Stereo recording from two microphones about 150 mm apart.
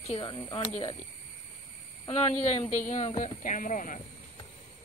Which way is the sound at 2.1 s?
45° left (ahead or behind).